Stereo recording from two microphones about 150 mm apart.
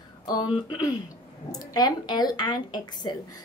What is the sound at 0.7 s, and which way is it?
A woman's voice, 25° left (ahead or behind).